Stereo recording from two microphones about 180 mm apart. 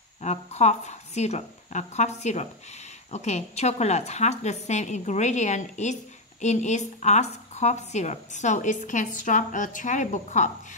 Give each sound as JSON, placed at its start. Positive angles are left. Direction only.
{"t": 0.2, "sound": "speech", "side_deg": 40}